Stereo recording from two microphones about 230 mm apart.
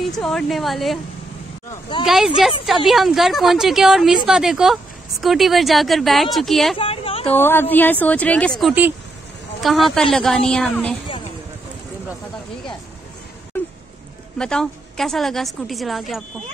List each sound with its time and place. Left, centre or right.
0.0 s a woman's voice: centre
1.7 s a sound: left
2.0 s a woman's voice: centre
6.8 s a sound: left
7.3 s a woman's voice: centre
14.4 s a woman's voice: centre